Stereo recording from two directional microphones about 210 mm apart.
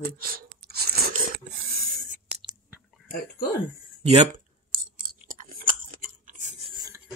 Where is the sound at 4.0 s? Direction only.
30° right (ahead or behind).